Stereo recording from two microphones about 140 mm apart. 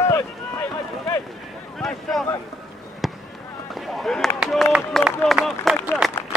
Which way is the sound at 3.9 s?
Centre (ahead or behind).